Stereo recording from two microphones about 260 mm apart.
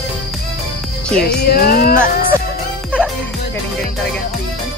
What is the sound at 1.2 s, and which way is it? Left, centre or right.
Music, left.